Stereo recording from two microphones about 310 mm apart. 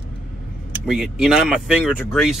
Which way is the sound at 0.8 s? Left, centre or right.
Centre.